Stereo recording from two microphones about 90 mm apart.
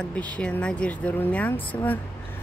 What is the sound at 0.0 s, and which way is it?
Speech, 15° left (ahead or behind).